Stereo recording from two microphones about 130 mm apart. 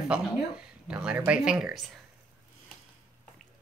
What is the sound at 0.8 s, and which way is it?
Speech, 5° right (ahead or behind).